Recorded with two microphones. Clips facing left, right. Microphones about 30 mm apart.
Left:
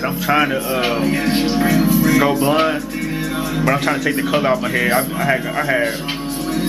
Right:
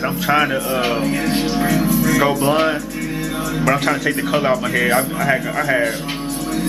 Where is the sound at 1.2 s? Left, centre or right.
Centre.